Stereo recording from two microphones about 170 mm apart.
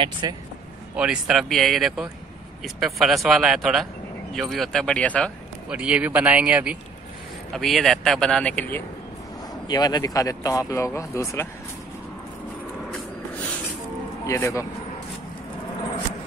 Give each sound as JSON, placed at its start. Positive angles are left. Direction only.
{"t": 0.0, "sound": "a man's voice", "side_deg": -25}
{"t": 0.9, "sound": "speech", "side_deg": -5}
{"t": 5.7, "sound": "speech", "side_deg": -5}
{"t": 9.7, "sound": "speech", "side_deg": 25}
{"t": 14.2, "sound": "speech", "side_deg": 15}